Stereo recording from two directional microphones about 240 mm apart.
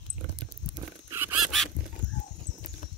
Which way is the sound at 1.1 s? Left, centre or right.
Centre.